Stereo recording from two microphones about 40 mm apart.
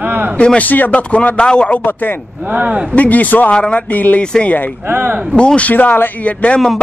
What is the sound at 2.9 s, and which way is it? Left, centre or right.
Speech, left.